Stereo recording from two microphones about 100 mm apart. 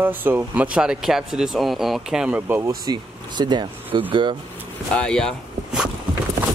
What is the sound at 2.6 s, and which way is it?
Speech, 45° right (ahead or behind).